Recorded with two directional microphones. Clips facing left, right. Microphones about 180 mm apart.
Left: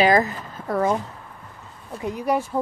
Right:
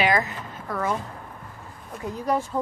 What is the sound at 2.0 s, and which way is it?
Speech, 15° left (ahead or behind).